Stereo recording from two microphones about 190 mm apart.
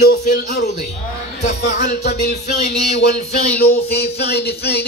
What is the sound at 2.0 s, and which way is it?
Music, 35° left (ahead or behind).